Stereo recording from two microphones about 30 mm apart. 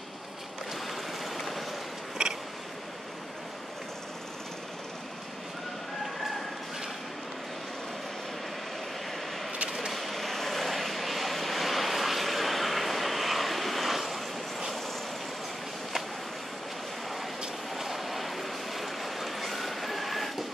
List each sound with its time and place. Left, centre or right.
1.2 s train: centre
2.2 s a sound: right
9.8 s vehicle: centre
17.7 s vehicle: centre